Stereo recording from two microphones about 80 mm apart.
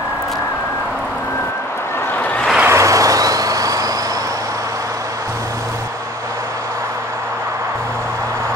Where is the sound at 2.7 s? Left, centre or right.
Right.